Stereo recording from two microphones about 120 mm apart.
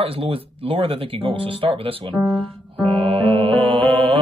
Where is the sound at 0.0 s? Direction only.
50° right (ahead or behind).